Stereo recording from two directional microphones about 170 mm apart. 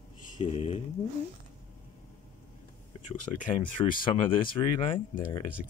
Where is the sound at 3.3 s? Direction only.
25° left (ahead or behind).